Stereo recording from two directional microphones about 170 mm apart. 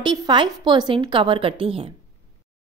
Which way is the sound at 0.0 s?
25° right (ahead or behind).